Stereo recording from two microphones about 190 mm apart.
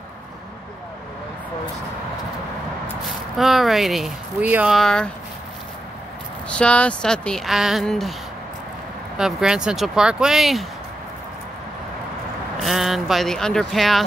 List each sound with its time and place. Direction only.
3.3 s speech: centre (ahead or behind)
6.5 s speech: 5° left (ahead or behind)
9.2 s speech: 5° right (ahead or behind)
12.6 s speech: centre (ahead or behind)